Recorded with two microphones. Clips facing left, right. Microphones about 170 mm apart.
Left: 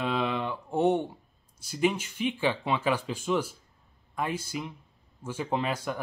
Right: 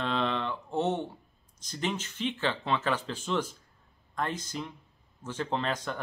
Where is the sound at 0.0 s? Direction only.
10° left (ahead or behind).